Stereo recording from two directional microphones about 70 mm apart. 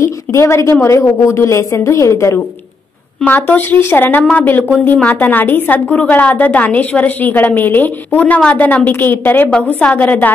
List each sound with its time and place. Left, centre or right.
0.0 s a woman's voice: left
3.3 s a woman's voice: left
4.2 s a woman's voice: centre